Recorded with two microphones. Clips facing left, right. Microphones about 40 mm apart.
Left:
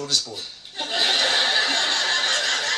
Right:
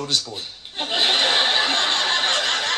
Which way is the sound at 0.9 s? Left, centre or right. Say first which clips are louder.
Right 2 dB; right.